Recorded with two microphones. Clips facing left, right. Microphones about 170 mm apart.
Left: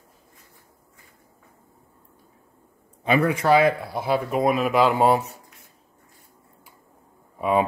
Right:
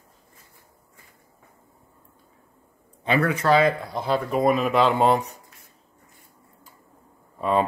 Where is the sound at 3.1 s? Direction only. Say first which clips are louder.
Left 1 dB; 15° left (ahead or behind).